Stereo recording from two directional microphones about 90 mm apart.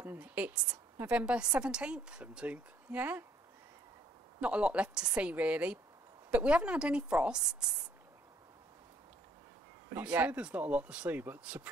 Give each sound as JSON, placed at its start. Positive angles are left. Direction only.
{"t": 0.0, "sound": "a sound", "side_deg": -20}
{"t": 0.9, "sound": "a woman's voice", "side_deg": -15}
{"t": 4.4, "sound": "a woman's voice", "side_deg": -15}
{"t": 9.9, "sound": "a woman's voice", "side_deg": -20}